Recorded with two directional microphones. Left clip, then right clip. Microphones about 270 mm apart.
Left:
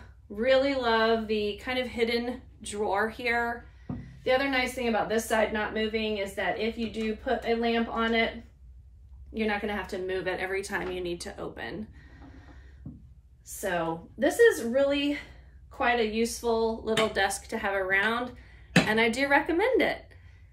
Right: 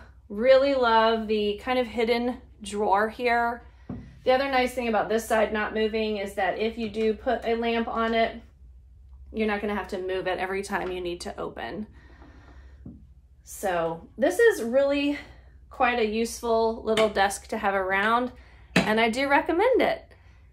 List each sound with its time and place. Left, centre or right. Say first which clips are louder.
0.4 s speech: right 5 dB; centre
9.3 s speech: right 2 dB; right
14.2 s speech: right 1 dB; right